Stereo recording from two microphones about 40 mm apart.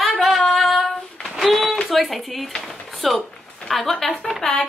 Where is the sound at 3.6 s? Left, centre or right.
Centre.